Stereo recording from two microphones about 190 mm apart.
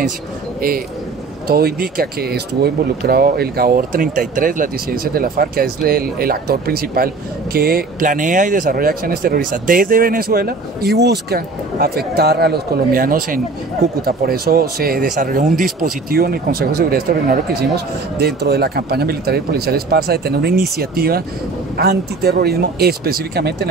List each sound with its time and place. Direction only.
0.6 s a man's voice: 50° right (ahead or behind)